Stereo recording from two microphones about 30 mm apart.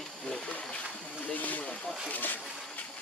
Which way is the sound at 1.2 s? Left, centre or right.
Left.